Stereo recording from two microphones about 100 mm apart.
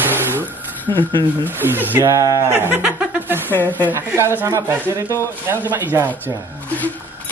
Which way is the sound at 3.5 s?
20° left (ahead or behind).